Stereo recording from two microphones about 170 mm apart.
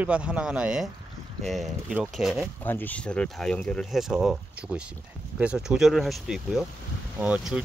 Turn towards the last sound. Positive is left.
turn(degrees=-5)  # may be behind; listen again after turning